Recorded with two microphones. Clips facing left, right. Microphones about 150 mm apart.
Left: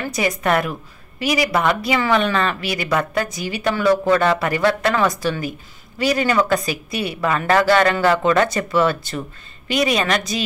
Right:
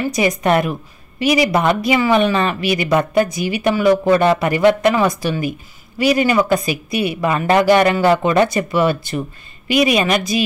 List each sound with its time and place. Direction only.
0.0 s a woman's voice: 15° right (ahead or behind)